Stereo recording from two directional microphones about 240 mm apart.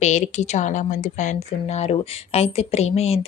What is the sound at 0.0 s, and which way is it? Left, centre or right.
A woman's voice, left.